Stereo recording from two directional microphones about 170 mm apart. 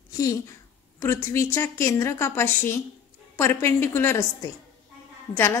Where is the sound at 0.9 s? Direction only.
15° left (ahead or behind).